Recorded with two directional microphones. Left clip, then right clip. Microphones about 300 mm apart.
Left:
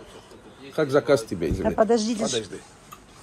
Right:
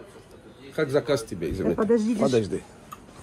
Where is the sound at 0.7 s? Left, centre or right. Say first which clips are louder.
Left 4 dB; centre.